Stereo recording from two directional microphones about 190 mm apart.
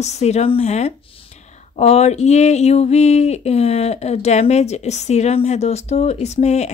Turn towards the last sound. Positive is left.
turn(degrees=35)  # may be behind; listen again after turning